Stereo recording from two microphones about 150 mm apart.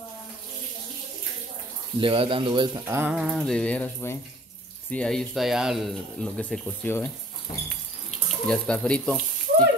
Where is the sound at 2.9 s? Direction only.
15° right (ahead or behind).